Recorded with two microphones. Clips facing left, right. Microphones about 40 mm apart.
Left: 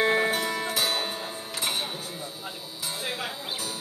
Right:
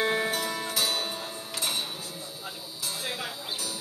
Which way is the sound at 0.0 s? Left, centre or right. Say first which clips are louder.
Left 3 dB; centre.